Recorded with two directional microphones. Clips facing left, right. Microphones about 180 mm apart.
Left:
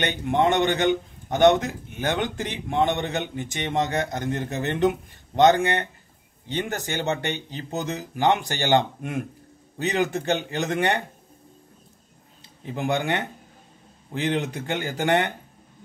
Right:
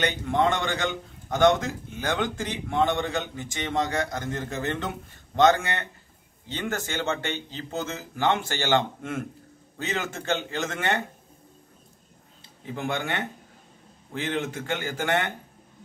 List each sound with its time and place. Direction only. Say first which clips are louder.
0.0 s a man's voice: left 2 dB; 20° left (ahead or behind)
12.6 s a man's voice: left 5 dB; 15° left (ahead or behind)